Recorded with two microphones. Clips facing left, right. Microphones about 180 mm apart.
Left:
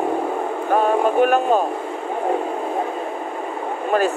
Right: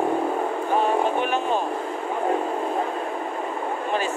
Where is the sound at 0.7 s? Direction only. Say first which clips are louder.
Left 5 dB; 45° left (ahead or behind).